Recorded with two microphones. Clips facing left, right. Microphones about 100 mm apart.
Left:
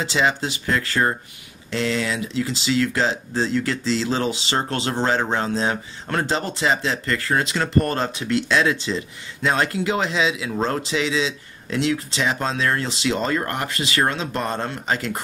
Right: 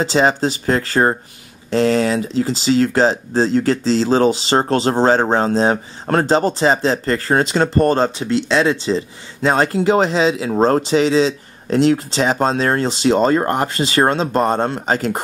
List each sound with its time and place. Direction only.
0.0 s speech: 35° right (ahead or behind)